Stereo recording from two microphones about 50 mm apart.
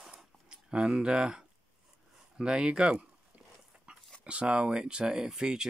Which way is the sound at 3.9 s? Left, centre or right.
Right.